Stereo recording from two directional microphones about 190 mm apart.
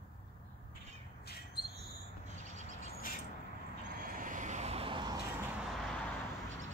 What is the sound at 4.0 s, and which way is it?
Vehicle, 45° right (ahead or behind).